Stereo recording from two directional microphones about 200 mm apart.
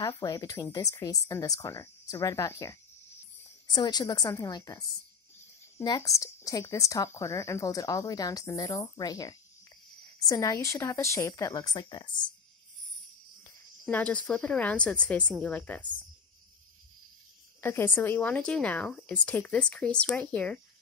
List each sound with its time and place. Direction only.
0.0 s a woman's voice: 20° left (ahead or behind)
13.8 s speech: 5° left (ahead or behind)
17.6 s speech: 10° left (ahead or behind)